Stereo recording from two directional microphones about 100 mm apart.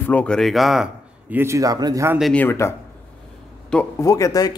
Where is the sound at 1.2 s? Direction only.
25° right (ahead or behind).